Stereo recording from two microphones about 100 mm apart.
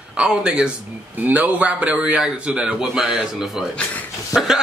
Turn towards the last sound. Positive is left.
turn(degrees=-5)  # may be behind; listen again after turning